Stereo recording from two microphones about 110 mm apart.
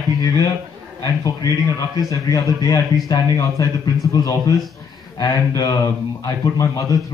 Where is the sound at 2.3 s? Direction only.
35° left (ahead or behind).